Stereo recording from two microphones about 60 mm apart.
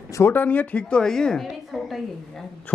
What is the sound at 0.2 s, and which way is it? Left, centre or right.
A woman's voice, left.